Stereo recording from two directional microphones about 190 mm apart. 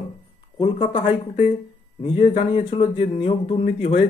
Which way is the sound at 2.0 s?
30° left (ahead or behind).